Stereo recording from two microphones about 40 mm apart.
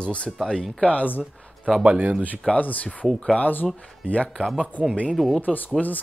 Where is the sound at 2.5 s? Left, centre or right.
Left.